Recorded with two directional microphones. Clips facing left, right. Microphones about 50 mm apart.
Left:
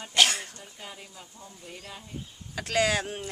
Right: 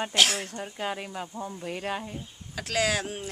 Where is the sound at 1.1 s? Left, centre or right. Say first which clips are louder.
Right 12 dB; right.